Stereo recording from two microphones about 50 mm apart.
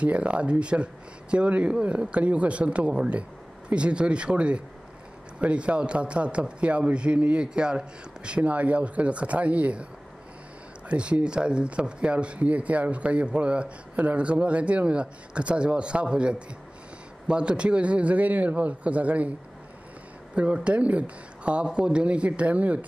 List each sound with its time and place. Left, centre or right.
0.0 s speech: right
10.9 s speech: right
20.3 s speech: right